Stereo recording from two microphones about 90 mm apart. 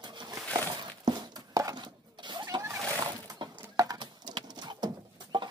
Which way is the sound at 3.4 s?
60° right (ahead or behind).